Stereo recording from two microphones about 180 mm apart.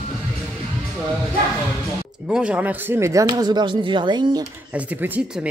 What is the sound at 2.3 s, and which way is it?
Speech, 5° right (ahead or behind).